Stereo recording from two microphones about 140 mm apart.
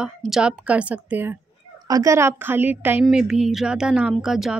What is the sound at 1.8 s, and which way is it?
Speech, 25° right (ahead or behind).